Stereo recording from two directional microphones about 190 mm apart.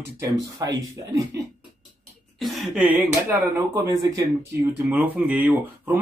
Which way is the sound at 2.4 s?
Centre (ahead or behind).